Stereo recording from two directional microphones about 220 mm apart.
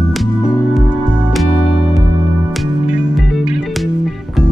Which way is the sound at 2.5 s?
Centre (ahead or behind).